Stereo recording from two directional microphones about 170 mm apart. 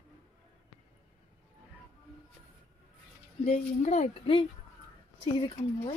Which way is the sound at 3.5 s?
40° left (ahead or behind).